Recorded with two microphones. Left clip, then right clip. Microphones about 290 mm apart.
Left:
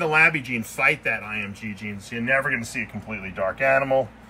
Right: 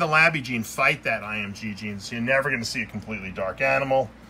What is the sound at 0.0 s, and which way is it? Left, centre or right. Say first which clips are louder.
Speech: left 1 dB; centre.